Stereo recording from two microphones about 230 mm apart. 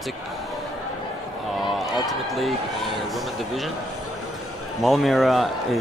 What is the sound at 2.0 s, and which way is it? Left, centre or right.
Speech, centre.